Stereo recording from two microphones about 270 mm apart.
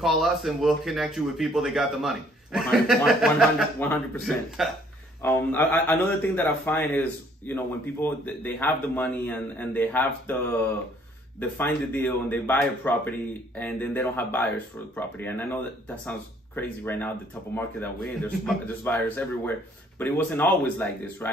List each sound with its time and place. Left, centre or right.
0.0 s a man's voice: centre
11.3 s a man's voice: centre